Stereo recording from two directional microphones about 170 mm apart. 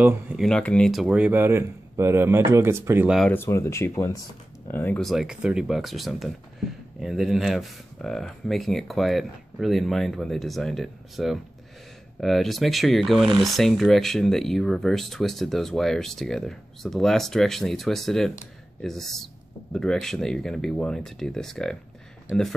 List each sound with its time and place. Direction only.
0.0 s speech: 5° right (ahead or behind)
0.5 s speech: 5° left (ahead or behind); by 3.2 s 15° right (ahead or behind)
3.2 s speech: 10° left (ahead or behind)
5.0 s speech: centre (ahead or behind)